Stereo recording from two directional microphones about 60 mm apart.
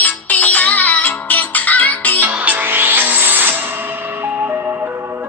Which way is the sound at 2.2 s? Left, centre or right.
Right.